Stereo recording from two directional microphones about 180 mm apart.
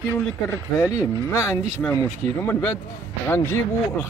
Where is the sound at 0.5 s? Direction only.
15° left (ahead or behind).